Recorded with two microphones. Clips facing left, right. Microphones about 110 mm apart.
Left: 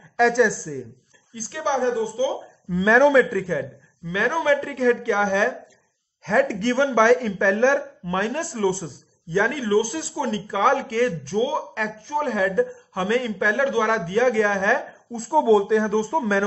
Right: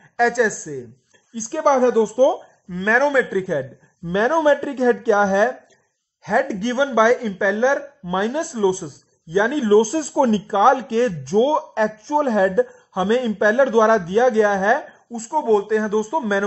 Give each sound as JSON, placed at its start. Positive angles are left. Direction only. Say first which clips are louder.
{"t": 0.2, "sound": "speech", "louder": "even", "side_deg": -5}
{"t": 1.3, "sound": "speech", "louder": "right 8 dB", "side_deg": -35}
{"t": 1.6, "sound": "speech", "louder": "right 7 dB", "side_deg": -55}
{"t": 2.7, "sound": "speech", "louder": "left 2 dB", "side_deg": 5}
{"t": 4.0, "sound": "speech", "louder": "right 6 dB", "side_deg": -30}
{"t": 6.2, "sound": "speech", "louder": "even", "side_deg": -10}
{"t": 9.7, "sound": "speech", "louder": "right 6 dB", "side_deg": -35}
{"t": 10.4, "sound": "speech", "louder": "right 5 dB", "side_deg": -25}
{"t": 15.1, "sound": "speech", "louder": "left 1 dB", "side_deg": 0}